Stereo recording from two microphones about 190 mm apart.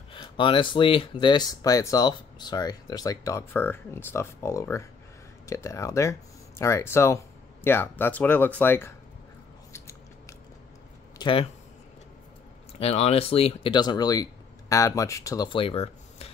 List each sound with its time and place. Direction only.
0.1 s speech: 25° left (ahead or behind); by 8.9 s 10° left (ahead or behind)
9.7 s scissors: 15° left (ahead or behind)
11.1 s speech: 25° left (ahead or behind)
12.7 s speech: 30° left (ahead or behind)